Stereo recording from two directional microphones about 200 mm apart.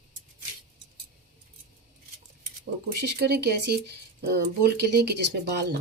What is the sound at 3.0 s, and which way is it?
Speech, 55° right (ahead or behind).